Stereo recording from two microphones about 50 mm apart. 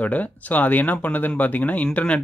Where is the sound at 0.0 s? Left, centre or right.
Left.